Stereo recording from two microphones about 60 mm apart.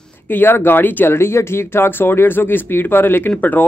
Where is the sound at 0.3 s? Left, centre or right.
Left.